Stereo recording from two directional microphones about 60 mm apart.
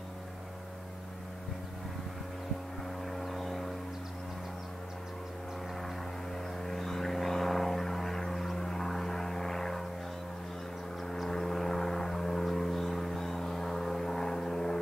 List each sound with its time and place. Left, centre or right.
3.1 s vehicle: centre
5.8 s vehicle: centre
11.1 s vehicle: centre